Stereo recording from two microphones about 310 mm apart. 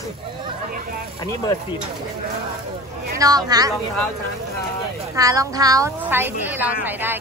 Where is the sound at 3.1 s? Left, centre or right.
Centre.